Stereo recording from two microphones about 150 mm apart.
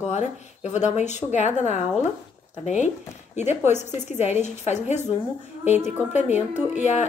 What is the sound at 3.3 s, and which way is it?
A woman's voice, 50° left (ahead or behind).